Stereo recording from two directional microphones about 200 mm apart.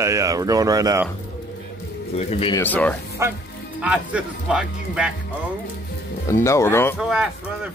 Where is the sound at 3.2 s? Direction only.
15° right (ahead or behind).